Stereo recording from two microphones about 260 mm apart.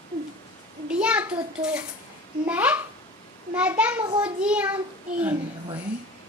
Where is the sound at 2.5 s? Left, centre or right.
Centre.